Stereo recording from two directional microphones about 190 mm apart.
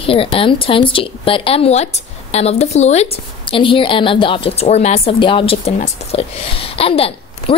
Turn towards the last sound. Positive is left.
turn(degrees=30)  # may be behind; listen again after turning